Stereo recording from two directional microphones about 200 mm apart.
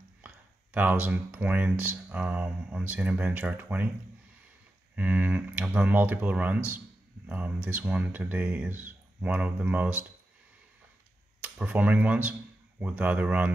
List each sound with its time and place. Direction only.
0.7 s speech: 10° right (ahead or behind)
4.9 s speech: 10° right (ahead or behind)
11.4 s speech: 10° right (ahead or behind)